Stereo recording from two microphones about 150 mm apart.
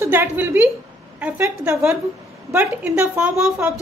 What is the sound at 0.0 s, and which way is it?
A woman's voice, 15° right (ahead or behind).